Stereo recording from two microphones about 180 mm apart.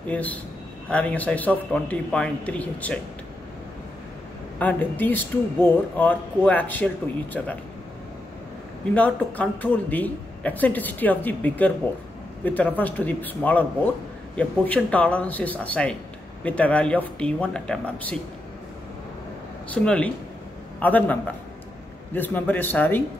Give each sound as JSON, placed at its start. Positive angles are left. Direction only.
{"t": 0.1, "sound": "speech", "side_deg": 10}
{"t": 4.6, "sound": "speech", "side_deg": 10}
{"t": 8.9, "sound": "speech", "side_deg": 10}
{"t": 19.7, "sound": "speech", "side_deg": 5}